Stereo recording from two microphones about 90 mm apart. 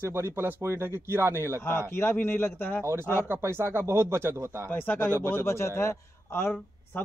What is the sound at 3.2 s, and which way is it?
Speech, 25° right (ahead or behind).